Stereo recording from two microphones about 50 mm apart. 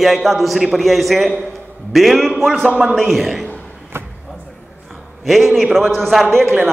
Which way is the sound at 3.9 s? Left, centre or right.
Right.